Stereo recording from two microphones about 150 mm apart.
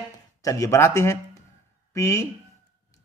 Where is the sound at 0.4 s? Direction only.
20° left (ahead or behind).